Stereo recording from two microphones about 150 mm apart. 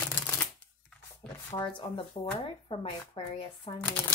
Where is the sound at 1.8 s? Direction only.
35° left (ahead or behind).